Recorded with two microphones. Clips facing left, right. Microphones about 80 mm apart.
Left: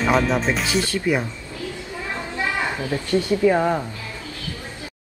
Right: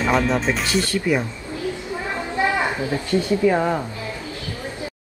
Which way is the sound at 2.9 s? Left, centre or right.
Right.